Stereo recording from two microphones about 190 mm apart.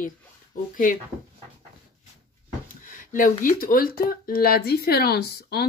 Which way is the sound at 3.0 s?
45° left (ahead or behind).